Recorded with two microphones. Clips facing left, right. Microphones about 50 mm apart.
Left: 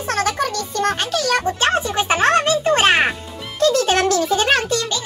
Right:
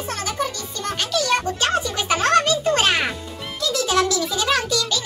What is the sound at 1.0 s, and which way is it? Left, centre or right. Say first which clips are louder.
Music: left 2 dB; left.